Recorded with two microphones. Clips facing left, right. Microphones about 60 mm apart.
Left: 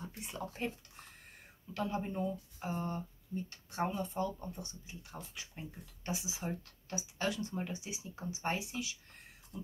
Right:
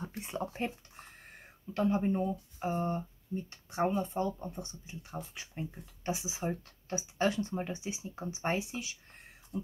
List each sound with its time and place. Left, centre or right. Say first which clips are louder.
0.2 s speech: right 4 dB; right
9.5 s speech: right 7 dB; centre